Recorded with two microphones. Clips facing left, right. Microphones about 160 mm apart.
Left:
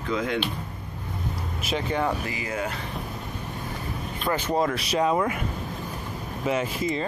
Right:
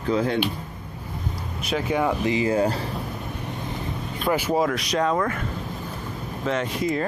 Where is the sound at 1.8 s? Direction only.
10° right (ahead or behind).